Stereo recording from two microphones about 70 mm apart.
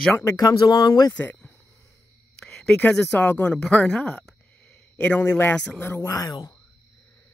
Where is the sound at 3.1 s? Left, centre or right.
Left; by 4.3 s centre.